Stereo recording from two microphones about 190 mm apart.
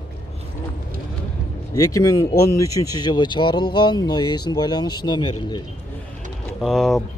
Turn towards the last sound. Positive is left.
turn(degrees=0)  # may be behind; listen again after turning